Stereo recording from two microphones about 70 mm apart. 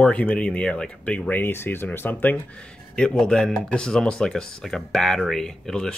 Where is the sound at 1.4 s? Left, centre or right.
Left.